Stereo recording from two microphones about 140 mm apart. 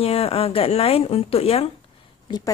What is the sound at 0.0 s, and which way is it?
A woman's voice, 45° left (ahead or behind).